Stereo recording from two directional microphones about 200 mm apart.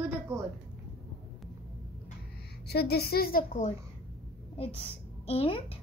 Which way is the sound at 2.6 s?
55° left (ahead or behind).